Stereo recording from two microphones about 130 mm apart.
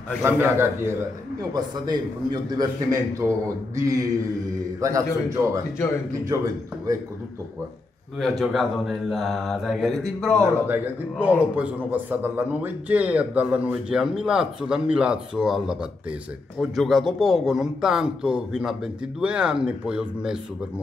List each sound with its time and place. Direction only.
0.2 s a man's voice: 20° right (ahead or behind)
2.5 s a man's voice: 30° right (ahead or behind)
8.2 s speech: centre (ahead or behind)
10.4 s a man's voice: 15° right (ahead or behind)